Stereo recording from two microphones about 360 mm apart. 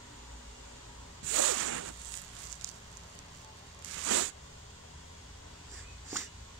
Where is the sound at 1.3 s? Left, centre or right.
Right.